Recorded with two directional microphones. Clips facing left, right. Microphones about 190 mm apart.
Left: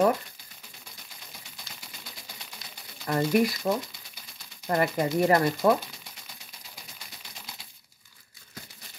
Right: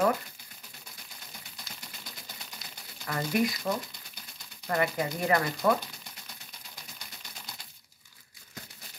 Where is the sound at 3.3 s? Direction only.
Centre (ahead or behind).